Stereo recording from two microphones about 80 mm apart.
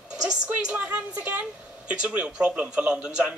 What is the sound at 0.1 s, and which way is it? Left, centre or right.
A woman's voice, centre.